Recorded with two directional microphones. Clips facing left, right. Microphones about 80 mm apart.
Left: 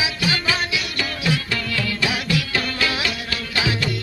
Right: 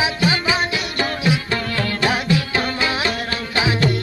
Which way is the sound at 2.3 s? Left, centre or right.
Right.